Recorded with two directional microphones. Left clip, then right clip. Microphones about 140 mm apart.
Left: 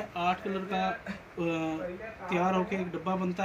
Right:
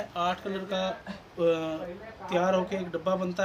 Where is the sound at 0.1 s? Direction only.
30° right (ahead or behind).